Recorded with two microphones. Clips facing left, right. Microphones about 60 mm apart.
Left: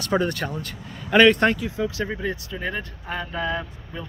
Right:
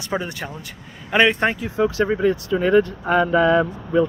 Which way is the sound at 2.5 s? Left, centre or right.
Right.